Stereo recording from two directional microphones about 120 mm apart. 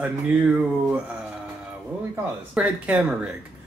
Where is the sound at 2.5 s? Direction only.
10° right (ahead or behind).